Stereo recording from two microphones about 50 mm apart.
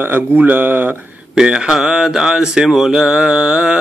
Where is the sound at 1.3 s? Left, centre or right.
Centre.